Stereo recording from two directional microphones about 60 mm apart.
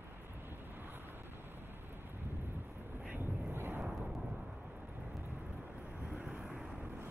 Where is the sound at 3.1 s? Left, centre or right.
Right.